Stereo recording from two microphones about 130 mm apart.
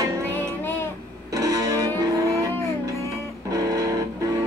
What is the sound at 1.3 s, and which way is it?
Music, 25° right (ahead or behind).